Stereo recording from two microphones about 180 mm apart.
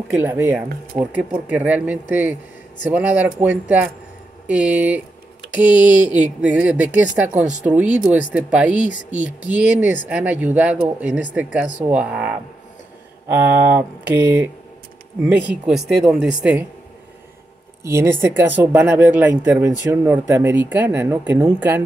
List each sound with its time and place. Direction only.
0.1 s speech: 10° right (ahead or behind)
15.5 s speech: 5° right (ahead or behind)
17.8 s speech: 15° right (ahead or behind)